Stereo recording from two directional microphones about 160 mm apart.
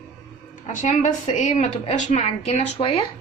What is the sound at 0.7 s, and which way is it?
A woman's voice, 50° left (ahead or behind).